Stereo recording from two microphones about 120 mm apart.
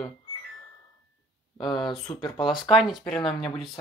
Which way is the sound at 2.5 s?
5° right (ahead or behind).